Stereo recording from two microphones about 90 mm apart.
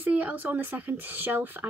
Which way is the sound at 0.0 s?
20° right (ahead or behind).